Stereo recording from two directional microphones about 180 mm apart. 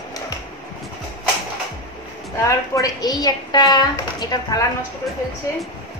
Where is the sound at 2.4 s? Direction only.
15° left (ahead or behind).